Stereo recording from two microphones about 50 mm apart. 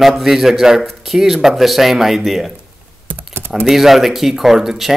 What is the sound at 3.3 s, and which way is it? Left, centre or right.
Typing, right.